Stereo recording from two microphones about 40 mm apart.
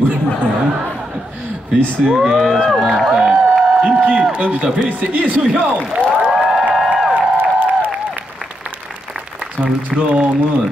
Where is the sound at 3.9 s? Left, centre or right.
Right.